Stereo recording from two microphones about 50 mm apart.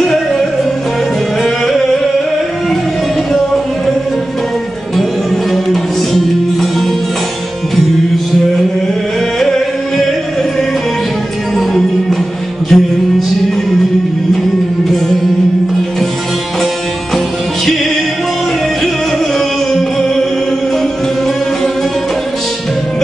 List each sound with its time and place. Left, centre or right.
0.0 s music: centre
4.9 s music: centre
9.4 s music: centre
11.5 s music: centre
19.3 s music: centre